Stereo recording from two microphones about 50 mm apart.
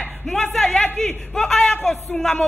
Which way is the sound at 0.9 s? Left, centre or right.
Centre.